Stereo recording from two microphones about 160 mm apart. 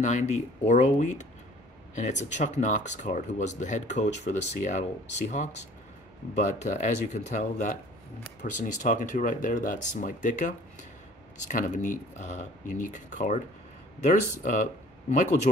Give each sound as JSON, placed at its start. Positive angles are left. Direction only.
{"t": 0.0, "sound": "speech", "side_deg": 50}
{"t": 15.5, "sound": "speech", "side_deg": 40}